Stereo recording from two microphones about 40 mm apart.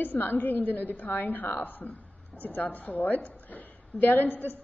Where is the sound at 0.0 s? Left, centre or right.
Left.